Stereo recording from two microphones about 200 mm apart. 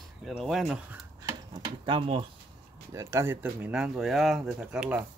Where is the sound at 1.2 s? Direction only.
25° right (ahead or behind).